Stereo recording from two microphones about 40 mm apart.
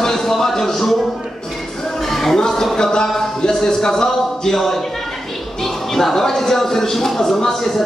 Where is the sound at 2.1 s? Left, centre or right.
Centre.